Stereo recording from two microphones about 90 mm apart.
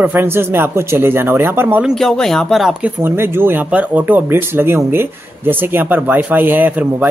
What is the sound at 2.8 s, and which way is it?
Speech, 25° right (ahead or behind).